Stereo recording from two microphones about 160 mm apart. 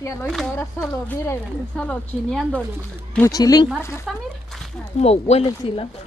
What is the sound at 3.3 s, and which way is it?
Speech, 25° left (ahead or behind).